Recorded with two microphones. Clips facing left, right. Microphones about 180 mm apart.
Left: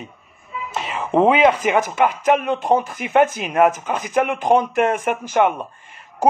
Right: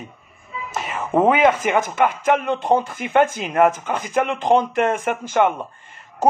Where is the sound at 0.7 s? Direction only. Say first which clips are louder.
Left 1 dB; centre (ahead or behind).